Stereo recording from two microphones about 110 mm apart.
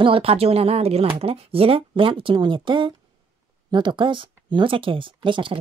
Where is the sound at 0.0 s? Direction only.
60° right (ahead or behind).